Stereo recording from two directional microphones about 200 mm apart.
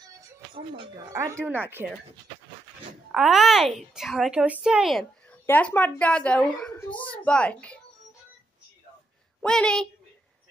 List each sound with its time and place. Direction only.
0.7 s speech: 20° right (ahead or behind)
3.1 s a woman's voice: centre (ahead or behind)
6.9 s a child's voice: 25° left (ahead or behind)
7.2 s a woman's voice: 5° left (ahead or behind)
9.4 s a woman's voice: 5° left (ahead or behind)